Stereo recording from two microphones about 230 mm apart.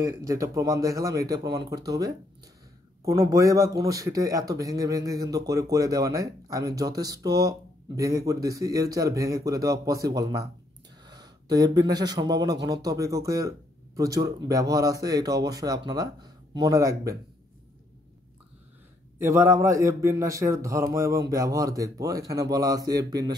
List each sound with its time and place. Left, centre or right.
0.2 s a man's voice: centre
19.1 s speech: centre